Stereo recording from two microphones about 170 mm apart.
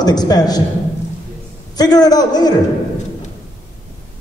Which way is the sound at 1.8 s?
25° left (ahead or behind).